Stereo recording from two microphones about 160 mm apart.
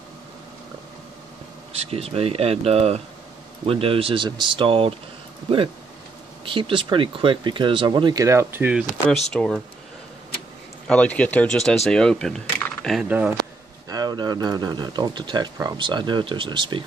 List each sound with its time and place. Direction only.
1.9 s speech: 40° right (ahead or behind)
6.4 s speech: 30° right (ahead or behind); by 9.2 s 5° right (ahead or behind)
9.3 s speech: 5° left (ahead or behind)
10.9 s speech: 10° left (ahead or behind)
13.8 s speech: 25° right (ahead or behind)